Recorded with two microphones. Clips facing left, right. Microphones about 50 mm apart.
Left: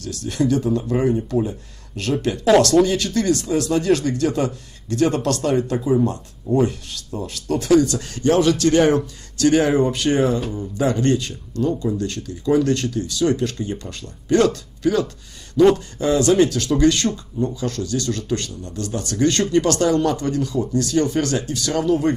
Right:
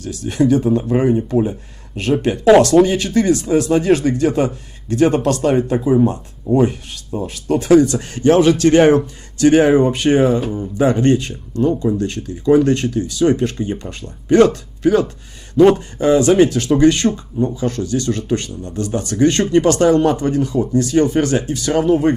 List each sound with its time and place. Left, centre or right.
0.0 s speech: right